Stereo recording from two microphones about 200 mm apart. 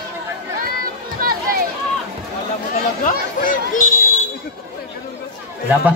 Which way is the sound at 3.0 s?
40° left (ahead or behind).